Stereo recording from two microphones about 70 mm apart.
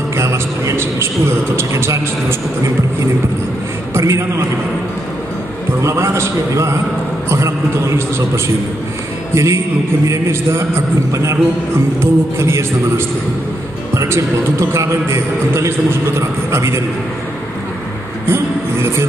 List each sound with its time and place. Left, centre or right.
0.2 s a sound: right
1.6 s a man's voice: right
3.9 s a man's voice: right
5.8 s a man's voice: right
9.3 s a man's voice: right
18.2 s a sound: right